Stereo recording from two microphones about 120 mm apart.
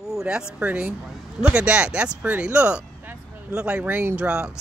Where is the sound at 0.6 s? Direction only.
10° right (ahead or behind).